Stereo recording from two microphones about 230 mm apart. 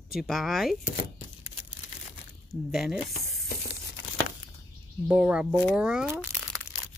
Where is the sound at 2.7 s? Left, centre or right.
Centre.